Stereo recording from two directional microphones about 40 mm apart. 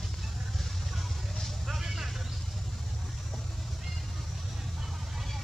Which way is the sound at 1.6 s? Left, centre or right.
Centre.